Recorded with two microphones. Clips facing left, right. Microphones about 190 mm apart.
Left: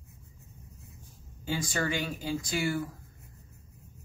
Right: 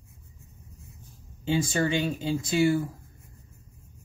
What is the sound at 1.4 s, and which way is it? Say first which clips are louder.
Speech: right 6 dB; 25° right (ahead or behind).